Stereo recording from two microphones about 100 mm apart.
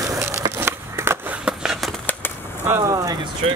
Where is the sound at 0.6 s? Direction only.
25° right (ahead or behind).